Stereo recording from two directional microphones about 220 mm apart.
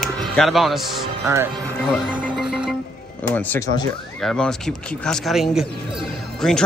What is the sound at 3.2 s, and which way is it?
Speech, 10° left (ahead or behind).